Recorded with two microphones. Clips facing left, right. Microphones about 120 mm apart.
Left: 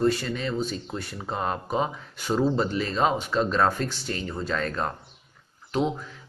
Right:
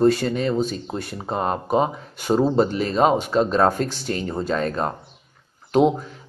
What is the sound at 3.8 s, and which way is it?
Speech, 60° right (ahead or behind).